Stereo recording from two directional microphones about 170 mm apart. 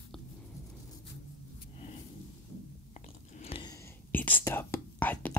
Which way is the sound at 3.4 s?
35° left (ahead or behind).